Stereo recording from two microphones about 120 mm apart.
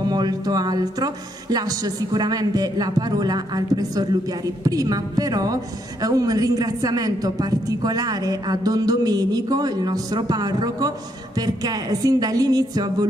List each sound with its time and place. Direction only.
0.1 s a woman's voice: 35° right (ahead or behind)